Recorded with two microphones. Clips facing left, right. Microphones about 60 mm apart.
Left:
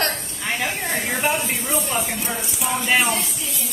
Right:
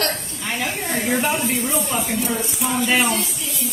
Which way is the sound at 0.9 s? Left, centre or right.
Centre.